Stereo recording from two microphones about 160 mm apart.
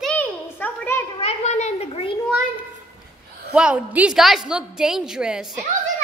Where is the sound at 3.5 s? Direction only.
5° right (ahead or behind).